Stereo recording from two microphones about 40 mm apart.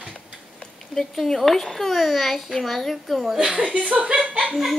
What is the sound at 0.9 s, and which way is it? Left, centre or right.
A child's voice, centre.